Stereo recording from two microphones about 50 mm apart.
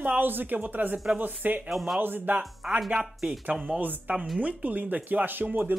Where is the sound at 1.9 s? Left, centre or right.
Right.